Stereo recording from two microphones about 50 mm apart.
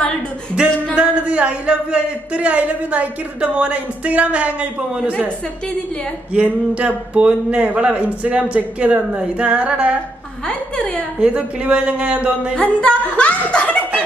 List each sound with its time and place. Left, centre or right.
0.6 s speech: right
6.3 s speech: right
11.1 s speech: right
12.5 s a woman's voice: left